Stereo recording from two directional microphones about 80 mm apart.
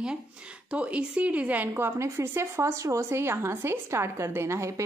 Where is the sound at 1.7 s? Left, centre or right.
Right.